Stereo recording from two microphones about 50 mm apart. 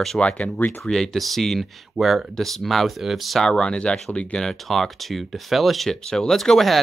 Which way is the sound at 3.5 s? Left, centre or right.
Centre.